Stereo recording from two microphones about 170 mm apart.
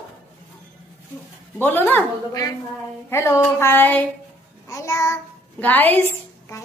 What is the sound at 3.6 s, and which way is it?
A woman's voice, 10° left (ahead or behind).